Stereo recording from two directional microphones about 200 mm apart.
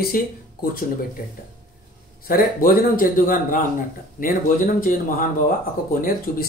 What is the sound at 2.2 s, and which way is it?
Speech, 45° left (ahead or behind).